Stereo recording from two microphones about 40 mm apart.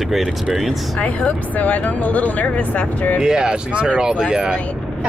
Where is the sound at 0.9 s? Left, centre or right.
Left.